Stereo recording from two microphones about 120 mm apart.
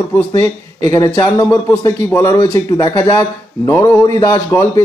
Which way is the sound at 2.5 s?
30° left (ahead or behind).